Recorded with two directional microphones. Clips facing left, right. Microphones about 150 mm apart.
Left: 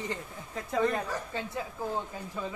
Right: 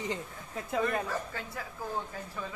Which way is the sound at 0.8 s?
20° left (ahead or behind).